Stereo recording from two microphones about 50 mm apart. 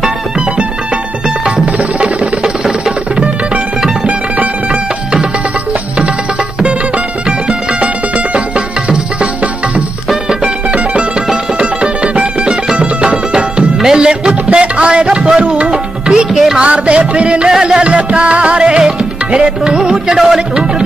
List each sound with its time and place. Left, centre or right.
1.2 s music: right
2.4 s music: centre
4.0 s music: right
7.2 s music: right
16.3 s music: centre
16.5 s music: right